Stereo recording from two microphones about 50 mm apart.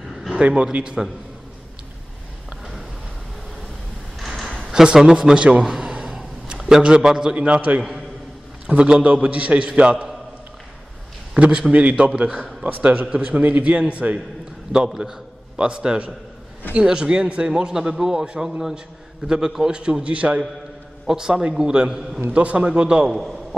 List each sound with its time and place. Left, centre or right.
0.4 s a man's voice: right
4.2 s a sound: centre
4.6 s a man's voice: centre
5.7 s a sound: centre
7.3 s a man's voice: right
11.3 s a man's voice: right
14.9 s a man's voice: centre
15.5 s a man's voice: centre
21.1 s a man's voice: centre